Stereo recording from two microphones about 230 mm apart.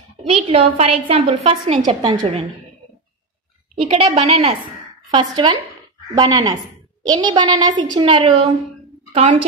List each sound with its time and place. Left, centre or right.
0.5 s a woman's voice: right
3.7 s a woman's voice: right